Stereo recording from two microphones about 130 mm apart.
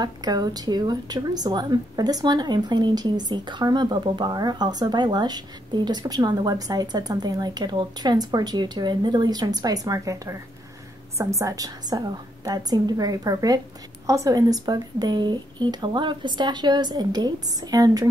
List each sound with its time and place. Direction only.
0.0 s a woman's voice: 30° right (ahead or behind)